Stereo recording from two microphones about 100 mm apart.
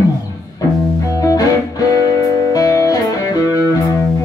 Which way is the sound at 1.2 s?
35° left (ahead or behind).